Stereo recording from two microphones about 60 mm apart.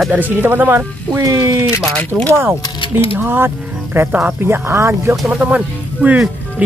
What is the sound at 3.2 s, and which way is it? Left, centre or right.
Speech, right.